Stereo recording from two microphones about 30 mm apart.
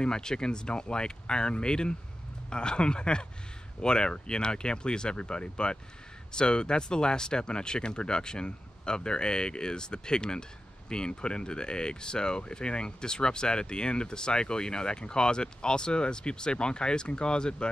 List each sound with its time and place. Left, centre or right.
0.0 s speech: left